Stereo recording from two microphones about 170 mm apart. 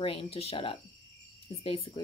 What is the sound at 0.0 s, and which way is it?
Speech, 35° left (ahead or behind).